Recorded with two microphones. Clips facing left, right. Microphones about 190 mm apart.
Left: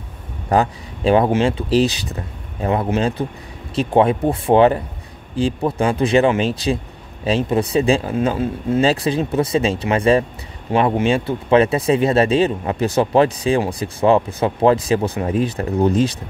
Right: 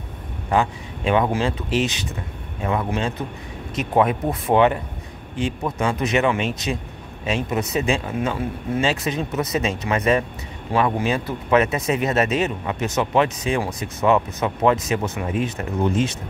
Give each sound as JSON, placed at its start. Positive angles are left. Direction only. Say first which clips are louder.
{"t": 0.5, "sound": "speech", "louder": "left 4 dB", "side_deg": 35}